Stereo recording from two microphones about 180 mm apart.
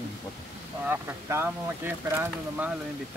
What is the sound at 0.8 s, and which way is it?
Speech, 10° right (ahead or behind).